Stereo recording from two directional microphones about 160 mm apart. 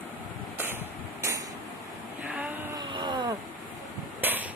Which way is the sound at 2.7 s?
30° right (ahead or behind).